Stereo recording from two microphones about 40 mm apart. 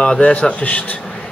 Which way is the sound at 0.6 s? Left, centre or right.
Left.